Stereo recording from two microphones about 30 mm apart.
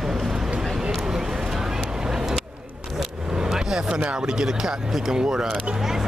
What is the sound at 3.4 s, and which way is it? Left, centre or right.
Vehicle, centre.